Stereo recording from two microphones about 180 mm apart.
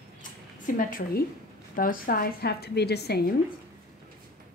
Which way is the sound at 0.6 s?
50° left (ahead or behind).